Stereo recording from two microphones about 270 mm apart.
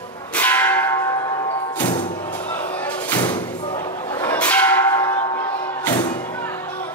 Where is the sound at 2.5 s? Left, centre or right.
Centre.